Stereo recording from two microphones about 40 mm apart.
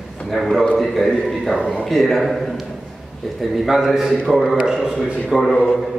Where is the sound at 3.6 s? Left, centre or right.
Centre.